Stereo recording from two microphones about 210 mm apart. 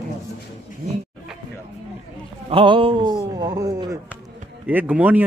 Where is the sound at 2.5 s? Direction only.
25° right (ahead or behind).